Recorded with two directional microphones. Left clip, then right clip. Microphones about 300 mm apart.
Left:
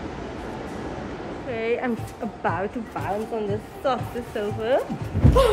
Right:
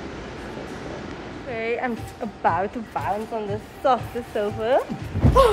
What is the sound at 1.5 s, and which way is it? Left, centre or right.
Music, centre.